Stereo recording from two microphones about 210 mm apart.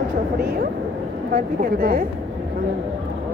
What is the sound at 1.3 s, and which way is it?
Speech, 45° right (ahead or behind).